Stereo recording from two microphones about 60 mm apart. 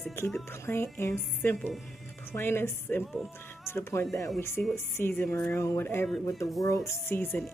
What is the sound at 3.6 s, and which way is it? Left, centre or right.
Speech, left.